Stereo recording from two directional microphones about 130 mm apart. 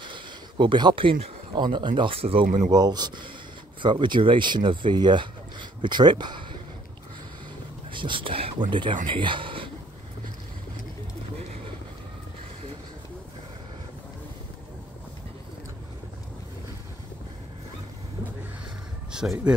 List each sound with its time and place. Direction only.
0.0 s speech: 40° right (ahead or behind)
2.4 s speech: 60° right (ahead or behind)
2.7 s speech: 30° right (ahead or behind)
7.9 s speech: 40° right (ahead or behind)
19.1 s speech: 5° right (ahead or behind)